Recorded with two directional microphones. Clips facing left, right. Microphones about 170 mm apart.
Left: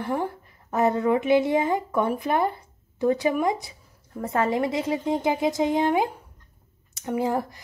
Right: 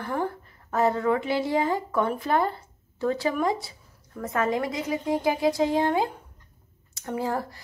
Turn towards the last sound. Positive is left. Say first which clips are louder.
# left 3 dB
turn(degrees=20)  # may be behind; listen again after turning